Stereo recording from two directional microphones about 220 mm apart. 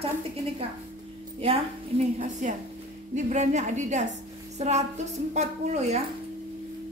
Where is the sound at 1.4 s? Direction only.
25° right (ahead or behind).